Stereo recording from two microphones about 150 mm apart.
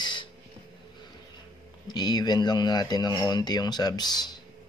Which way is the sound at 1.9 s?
30° left (ahead or behind).